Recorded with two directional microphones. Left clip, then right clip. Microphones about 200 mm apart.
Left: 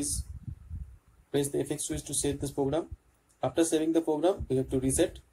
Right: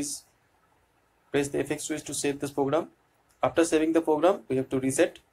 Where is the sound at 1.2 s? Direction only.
Centre (ahead or behind).